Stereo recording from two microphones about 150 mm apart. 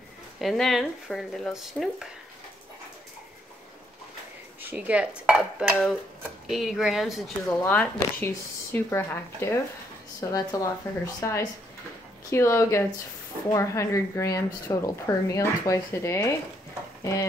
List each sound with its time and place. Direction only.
0.4 s speech: centre (ahead or behind)
4.6 s dishes: 10° right (ahead or behind)
6.4 s speech: centre (ahead or behind)
7.6 s a woman's voice: 15° left (ahead or behind)